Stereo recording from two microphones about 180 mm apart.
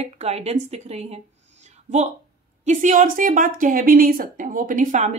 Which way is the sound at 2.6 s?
45° right (ahead or behind).